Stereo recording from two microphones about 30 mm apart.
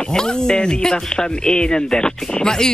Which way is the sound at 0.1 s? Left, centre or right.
Left.